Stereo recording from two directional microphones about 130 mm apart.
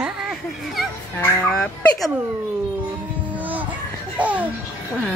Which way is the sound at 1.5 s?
5° left (ahead or behind).